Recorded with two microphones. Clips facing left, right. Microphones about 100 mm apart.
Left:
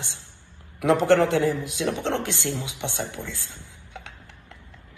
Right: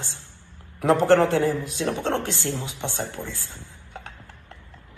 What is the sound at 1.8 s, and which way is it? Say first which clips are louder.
Speech: even; 20° left (ahead or behind).